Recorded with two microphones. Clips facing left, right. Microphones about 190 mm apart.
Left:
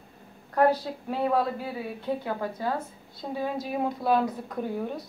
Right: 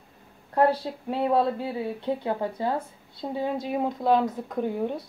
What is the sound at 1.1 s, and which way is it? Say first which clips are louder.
A woman's voice: right 2 dB; 25° right (ahead or behind).